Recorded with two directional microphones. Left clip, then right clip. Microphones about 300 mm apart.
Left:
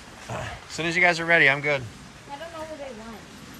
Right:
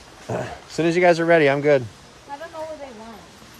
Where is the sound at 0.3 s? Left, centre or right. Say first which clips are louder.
Right 6 dB; right.